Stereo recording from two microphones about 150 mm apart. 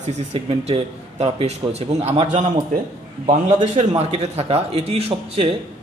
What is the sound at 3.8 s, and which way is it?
A man's voice, 50° right (ahead or behind).